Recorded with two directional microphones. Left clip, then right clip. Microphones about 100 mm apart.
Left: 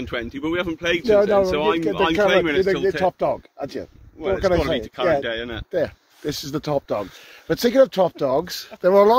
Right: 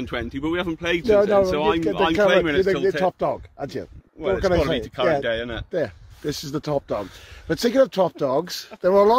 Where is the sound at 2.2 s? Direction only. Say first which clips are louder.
Even; 55° right (ahead or behind).